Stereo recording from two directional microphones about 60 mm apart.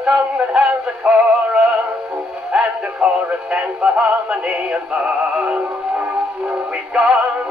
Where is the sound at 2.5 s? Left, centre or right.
Centre.